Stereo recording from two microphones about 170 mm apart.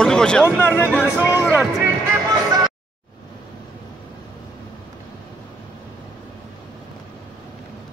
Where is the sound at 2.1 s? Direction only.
20° right (ahead or behind).